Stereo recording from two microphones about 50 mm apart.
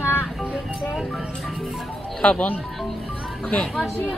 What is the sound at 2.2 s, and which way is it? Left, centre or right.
Speech, left.